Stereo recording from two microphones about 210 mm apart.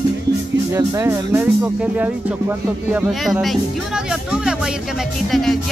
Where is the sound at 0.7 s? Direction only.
15° right (ahead or behind).